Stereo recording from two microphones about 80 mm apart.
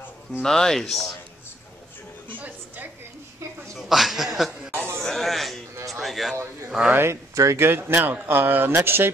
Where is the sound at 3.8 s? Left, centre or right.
Centre.